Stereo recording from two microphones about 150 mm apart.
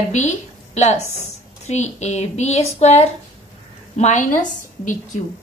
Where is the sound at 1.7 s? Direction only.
50° left (ahead or behind).